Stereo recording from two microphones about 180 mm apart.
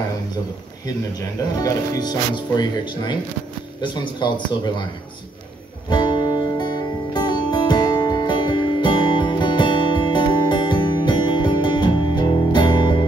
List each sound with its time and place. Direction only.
1.6 s speech: 20° left (ahead or behind)
5.9 s music: 25° left (ahead or behind)